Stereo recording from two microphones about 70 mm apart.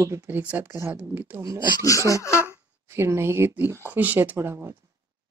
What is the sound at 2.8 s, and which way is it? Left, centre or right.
Speech, right.